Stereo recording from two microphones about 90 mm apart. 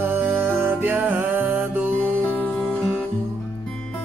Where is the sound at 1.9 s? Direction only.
15° left (ahead or behind).